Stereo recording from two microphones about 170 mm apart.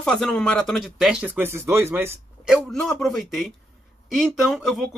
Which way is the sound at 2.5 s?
Centre (ahead or behind).